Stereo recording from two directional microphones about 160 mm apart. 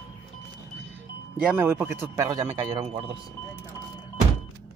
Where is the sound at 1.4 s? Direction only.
10° right (ahead or behind).